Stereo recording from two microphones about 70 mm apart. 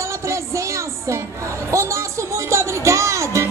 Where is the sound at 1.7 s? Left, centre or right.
Right.